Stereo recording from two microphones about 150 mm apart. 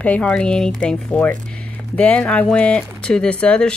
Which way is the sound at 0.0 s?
10° left (ahead or behind).